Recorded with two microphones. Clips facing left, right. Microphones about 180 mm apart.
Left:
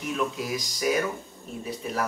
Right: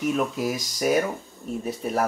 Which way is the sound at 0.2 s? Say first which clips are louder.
Right 3 dB; 50° right (ahead or behind).